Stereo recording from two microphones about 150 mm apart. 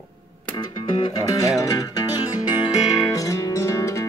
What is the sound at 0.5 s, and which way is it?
Music, 30° left (ahead or behind).